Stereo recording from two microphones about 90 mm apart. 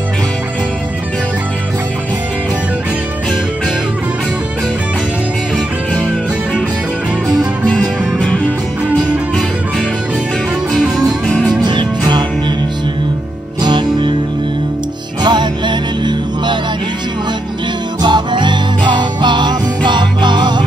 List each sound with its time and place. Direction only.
7.6 s music: 15° left (ahead or behind)
11.6 s music: 55° right (ahead or behind)
13.6 s music: 55° right (ahead or behind)
15.2 s music: 55° right (ahead or behind)
18.0 s music: 55° right (ahead or behind)